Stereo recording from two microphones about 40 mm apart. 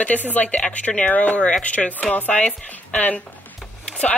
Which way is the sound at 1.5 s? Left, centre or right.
Left.